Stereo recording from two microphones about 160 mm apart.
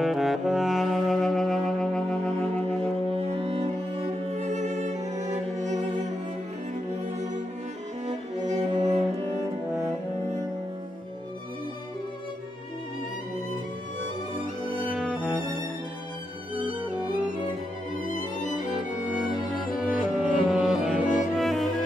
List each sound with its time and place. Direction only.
0.0 s saxophone: centre (ahead or behind)
3.2 s cello: 40° right (ahead or behind)
8.1 s cello: 45° right (ahead or behind)
16.5 s violin: 10° right (ahead or behind)
18.1 s music: 50° left (ahead or behind)
19.5 s music: 5° right (ahead or behind)